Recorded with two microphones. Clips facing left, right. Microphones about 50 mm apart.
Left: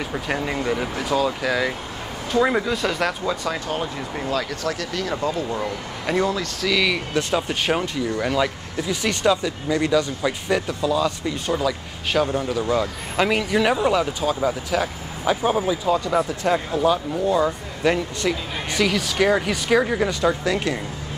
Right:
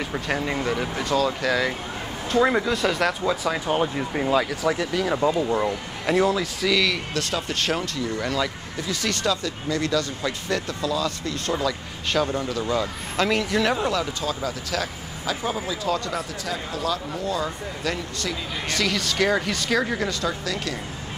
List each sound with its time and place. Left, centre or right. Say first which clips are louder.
0.0 s speech: left 1 dB; centre
3.6 s speech: right 3 dB; centre
6.0 s speech: right 1 dB; centre
7.2 s speech: left 4 dB; centre
15.4 s speech: left 7 dB; left
15.8 s speech: left 4 dB; centre
16.2 s speech: left 9 dB; left
18.8 s speech: left 4 dB; centre
20.1 s speech: left 6 dB; left